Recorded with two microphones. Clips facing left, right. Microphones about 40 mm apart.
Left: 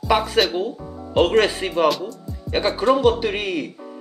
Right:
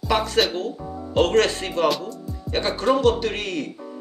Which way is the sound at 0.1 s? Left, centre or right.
Centre.